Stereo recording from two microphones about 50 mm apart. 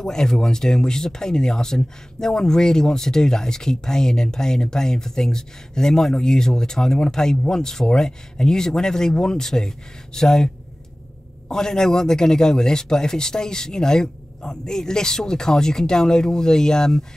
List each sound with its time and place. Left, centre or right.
0.0 s speech: centre